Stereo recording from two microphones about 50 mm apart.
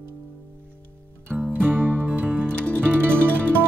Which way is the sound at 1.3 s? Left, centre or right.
Right.